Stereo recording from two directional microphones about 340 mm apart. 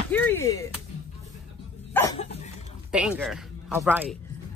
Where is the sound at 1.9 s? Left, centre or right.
Centre.